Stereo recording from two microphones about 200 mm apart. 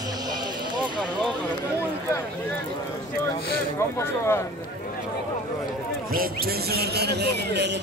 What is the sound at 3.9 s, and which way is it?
Speech, 15° left (ahead or behind).